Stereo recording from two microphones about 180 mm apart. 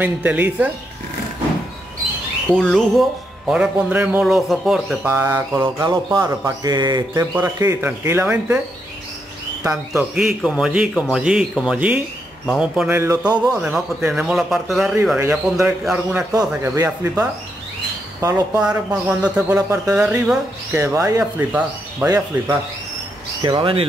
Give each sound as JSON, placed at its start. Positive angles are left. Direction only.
{"t": 0.0, "sound": "speech", "side_deg": -10}
{"t": 2.5, "sound": "speech", "side_deg": 5}
{"t": 9.6, "sound": "speech", "side_deg": -15}
{"t": 10.1, "sound": "speech", "side_deg": -5}
{"t": 15.1, "sound": "speech", "side_deg": -15}
{"t": 16.3, "sound": "speech", "side_deg": -20}
{"t": 18.2, "sound": "speech", "side_deg": -15}
{"t": 18.6, "sound": "speech", "side_deg": -5}